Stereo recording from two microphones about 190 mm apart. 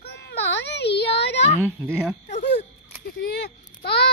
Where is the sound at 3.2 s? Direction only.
60° left (ahead or behind).